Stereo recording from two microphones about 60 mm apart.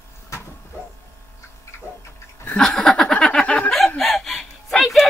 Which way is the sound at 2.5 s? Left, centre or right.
Centre.